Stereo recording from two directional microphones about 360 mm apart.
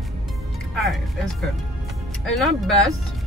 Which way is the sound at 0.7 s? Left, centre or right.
Centre.